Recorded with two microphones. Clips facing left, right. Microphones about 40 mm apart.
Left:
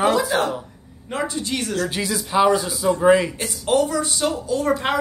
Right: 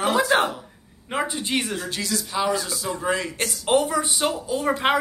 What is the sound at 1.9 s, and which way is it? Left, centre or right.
Speech, centre.